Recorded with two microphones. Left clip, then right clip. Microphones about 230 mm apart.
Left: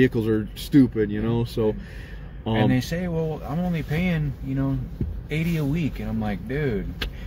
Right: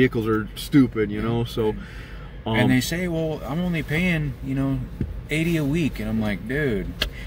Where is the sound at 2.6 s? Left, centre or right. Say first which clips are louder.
Right 3 dB; centre.